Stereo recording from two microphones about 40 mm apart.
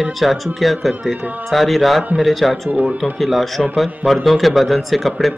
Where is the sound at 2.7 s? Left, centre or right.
Right.